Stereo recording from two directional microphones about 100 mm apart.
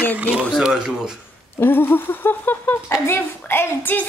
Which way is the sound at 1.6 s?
20° left (ahead or behind).